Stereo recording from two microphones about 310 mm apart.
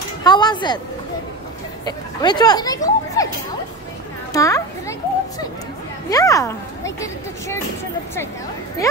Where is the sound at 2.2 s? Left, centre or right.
Centre.